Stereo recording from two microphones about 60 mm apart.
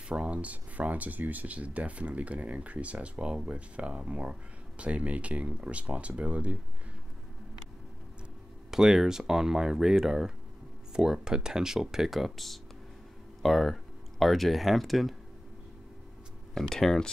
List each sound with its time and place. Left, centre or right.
0.1 s speech: centre
8.6 s speech: centre
16.5 s speech: centre